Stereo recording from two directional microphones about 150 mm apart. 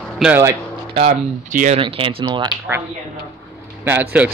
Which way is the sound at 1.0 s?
60° right (ahead or behind).